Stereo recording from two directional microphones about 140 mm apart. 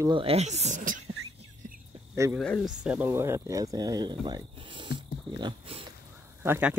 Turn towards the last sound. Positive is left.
turn(degrees=-10)  # may be behind; listen again after turning